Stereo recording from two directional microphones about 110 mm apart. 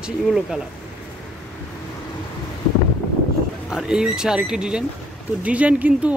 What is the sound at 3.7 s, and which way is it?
Speech, 5° right (ahead or behind).